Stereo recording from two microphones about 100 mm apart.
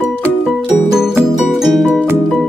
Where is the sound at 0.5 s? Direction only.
5° right (ahead or behind).